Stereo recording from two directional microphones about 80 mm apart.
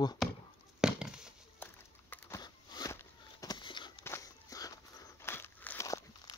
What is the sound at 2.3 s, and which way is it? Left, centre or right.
Biting, left.